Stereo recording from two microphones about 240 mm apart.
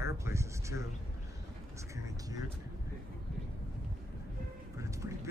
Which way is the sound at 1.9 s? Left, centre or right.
Centre.